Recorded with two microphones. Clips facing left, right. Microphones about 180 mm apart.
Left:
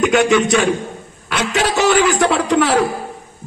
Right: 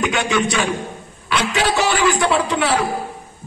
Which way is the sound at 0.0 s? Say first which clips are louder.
Left 6 dB; 45° left (ahead or behind).